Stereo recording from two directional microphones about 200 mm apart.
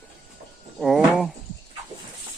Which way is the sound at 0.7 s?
Centre (ahead or behind).